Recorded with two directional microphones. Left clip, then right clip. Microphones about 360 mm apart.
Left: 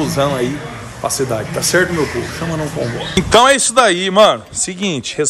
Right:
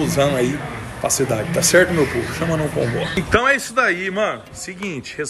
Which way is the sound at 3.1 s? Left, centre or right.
Centre.